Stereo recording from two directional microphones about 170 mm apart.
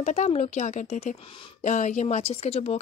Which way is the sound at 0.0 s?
40° left (ahead or behind).